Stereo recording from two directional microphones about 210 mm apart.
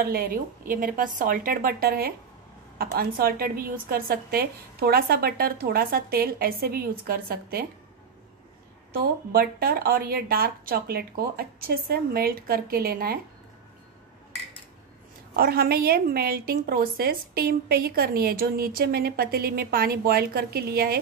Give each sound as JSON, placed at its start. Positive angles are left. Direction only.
{"t": 0.0, "sound": "a woman's voice", "side_deg": -45}
{"t": 8.9, "sound": "a woman's voice", "side_deg": -45}
{"t": 15.3, "sound": "a woman's voice", "side_deg": -45}